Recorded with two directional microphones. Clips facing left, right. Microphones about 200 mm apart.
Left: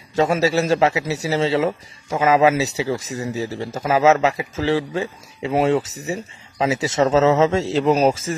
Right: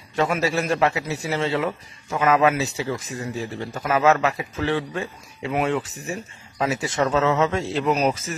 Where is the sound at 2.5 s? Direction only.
80° left.